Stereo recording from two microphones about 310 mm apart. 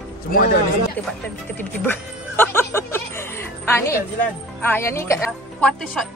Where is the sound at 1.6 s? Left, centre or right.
Centre.